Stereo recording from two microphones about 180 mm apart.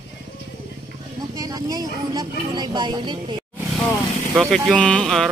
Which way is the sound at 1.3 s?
20° right (ahead or behind).